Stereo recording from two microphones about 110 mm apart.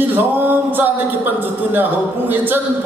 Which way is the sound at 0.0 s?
15° right (ahead or behind).